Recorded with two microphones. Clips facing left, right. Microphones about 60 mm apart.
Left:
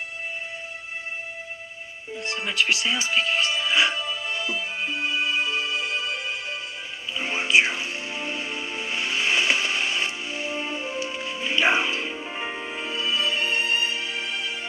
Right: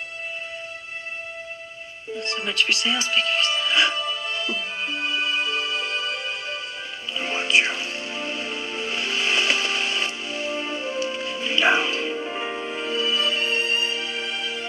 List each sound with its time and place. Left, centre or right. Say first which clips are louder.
2.4 s speech: even; centre
4.1 s music: right 1 dB; centre